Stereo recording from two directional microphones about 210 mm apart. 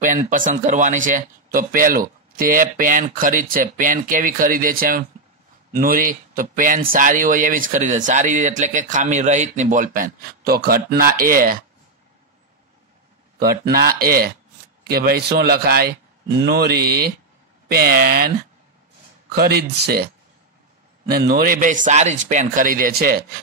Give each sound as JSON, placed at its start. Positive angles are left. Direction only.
{"t": 0.0, "sound": "speech", "side_deg": -40}
{"t": 13.4, "sound": "speech", "side_deg": -45}
{"t": 19.3, "sound": "speech", "side_deg": -50}
{"t": 21.1, "sound": "speech", "side_deg": -50}